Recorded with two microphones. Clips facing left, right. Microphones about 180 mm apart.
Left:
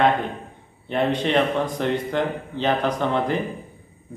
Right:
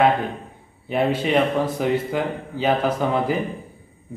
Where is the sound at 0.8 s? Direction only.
5° right (ahead or behind).